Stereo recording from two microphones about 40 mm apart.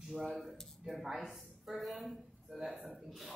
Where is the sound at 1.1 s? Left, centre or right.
Centre.